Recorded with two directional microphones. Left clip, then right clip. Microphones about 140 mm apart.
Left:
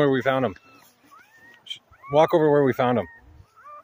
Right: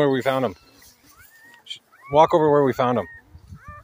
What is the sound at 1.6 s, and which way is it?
Speech, 5° left (ahead or behind).